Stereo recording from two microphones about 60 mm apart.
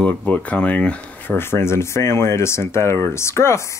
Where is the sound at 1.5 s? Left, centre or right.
Left.